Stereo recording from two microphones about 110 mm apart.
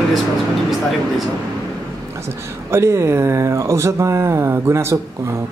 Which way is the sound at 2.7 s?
25° right (ahead or behind).